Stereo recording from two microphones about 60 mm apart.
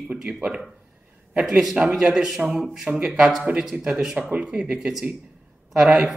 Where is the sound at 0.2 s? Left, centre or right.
Centre.